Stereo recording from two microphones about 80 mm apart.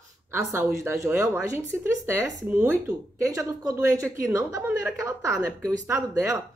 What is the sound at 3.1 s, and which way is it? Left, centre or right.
A woman's voice, right.